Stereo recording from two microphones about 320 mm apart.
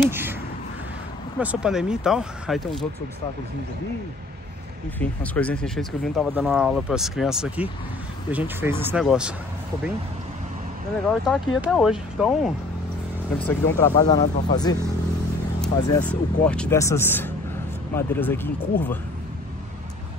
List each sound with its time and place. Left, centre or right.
0.1 s a sound: centre
1.4 s speech: centre
4.9 s speech: centre
11.1 s speech: centre
13.5 s speech: centre
15.6 s speech: centre